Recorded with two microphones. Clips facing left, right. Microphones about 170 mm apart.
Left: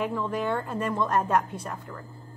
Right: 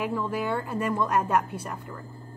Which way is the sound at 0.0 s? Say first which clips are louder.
Even; 5° right (ahead or behind).